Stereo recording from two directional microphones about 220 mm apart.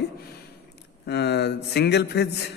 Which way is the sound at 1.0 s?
50° left (ahead or behind).